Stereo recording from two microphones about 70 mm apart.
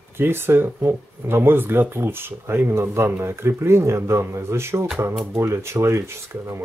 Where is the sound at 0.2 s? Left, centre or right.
Right.